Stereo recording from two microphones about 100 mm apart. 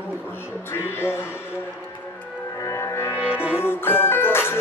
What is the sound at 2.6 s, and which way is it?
Music, 30° left (ahead or behind).